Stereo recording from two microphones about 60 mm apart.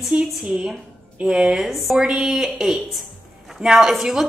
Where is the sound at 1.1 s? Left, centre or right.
Centre.